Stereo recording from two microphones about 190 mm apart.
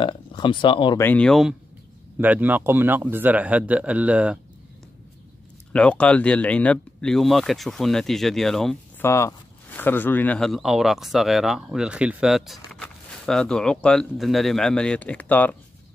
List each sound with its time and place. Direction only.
0.0 s speech: 25° left (ahead or behind)
1.0 s speech: 5° left (ahead or behind)
2.1 s speech: 10° right (ahead or behind)
5.7 s speech: 5° left (ahead or behind)
9.0 s speech: 15° left (ahead or behind)